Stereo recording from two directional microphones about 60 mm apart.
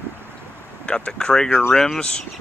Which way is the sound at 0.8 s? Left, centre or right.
Centre.